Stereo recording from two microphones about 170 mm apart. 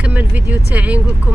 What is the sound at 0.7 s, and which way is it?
Speech, 10° right (ahead or behind).